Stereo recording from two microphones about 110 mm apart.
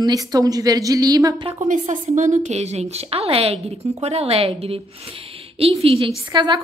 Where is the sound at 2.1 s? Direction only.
90° right; by 4.8 s 65° right (ahead or behind).